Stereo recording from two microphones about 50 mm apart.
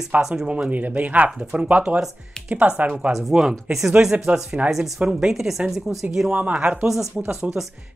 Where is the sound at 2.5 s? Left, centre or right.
Right.